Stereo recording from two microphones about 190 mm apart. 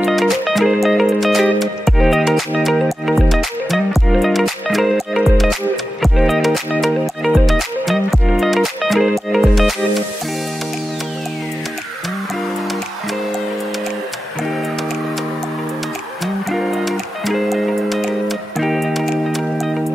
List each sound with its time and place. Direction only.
0.0 s music: centre (ahead or behind)
16.5 s music: centre (ahead or behind)